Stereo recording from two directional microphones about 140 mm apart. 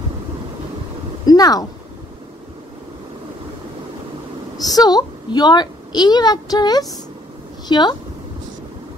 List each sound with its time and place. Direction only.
1.2 s a woman's voice: 25° left (ahead or behind)
4.6 s a woman's voice: 30° left (ahead or behind)